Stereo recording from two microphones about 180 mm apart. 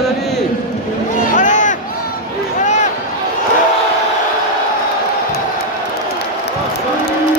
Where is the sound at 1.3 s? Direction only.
45° left (ahead or behind).